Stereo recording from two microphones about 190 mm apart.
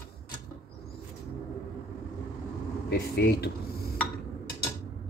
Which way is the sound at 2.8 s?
60° left (ahead or behind).